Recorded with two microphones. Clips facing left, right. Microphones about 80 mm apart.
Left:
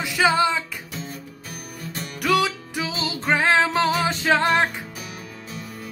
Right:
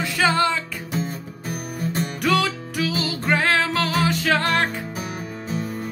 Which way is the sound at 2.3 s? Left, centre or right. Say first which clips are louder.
Left 3 dB; centre.